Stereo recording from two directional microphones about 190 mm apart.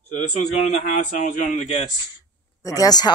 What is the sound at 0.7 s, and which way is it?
Speech, 35° left (ahead or behind).